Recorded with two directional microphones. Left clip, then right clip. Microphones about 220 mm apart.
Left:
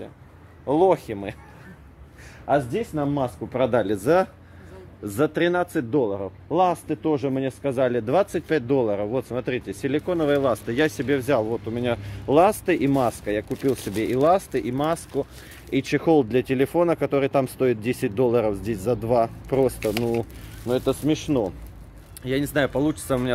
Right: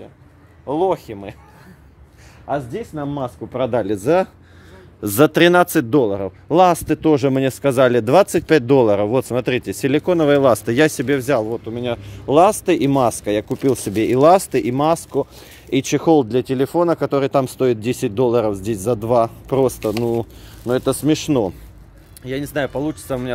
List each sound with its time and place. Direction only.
0.7 s speech: 5° right (ahead or behind)
2.4 s speech: 5° right (ahead or behind); by 4.3 s 35° right (ahead or behind)
5.0 s speech: 50° right (ahead or behind); by 11.4 s 35° right (ahead or behind)
11.4 s speech: 15° right (ahead or behind); by 21.5 s 50° right (ahead or behind)
22.2 s speech: 10° right (ahead or behind)